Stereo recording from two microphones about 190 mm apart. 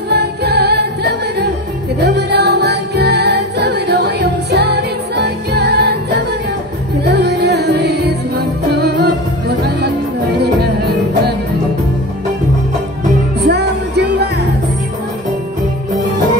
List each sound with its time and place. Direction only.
0.1 s music: 60° right (ahead or behind)
13.4 s music: 60° right (ahead or behind)